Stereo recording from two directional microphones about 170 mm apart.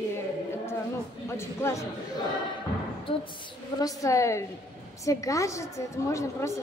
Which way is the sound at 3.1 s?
30° left (ahead or behind).